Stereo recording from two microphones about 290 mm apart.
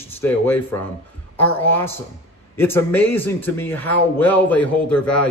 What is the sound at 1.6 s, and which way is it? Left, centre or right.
Speech, centre.